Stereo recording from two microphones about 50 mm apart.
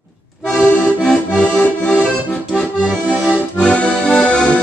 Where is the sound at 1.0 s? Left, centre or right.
Centre.